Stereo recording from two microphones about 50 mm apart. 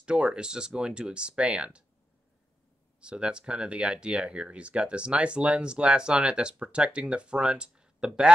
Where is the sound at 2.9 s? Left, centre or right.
Centre.